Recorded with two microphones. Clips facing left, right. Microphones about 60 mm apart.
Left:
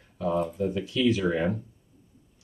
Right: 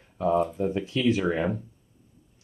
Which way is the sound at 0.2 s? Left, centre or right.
Right.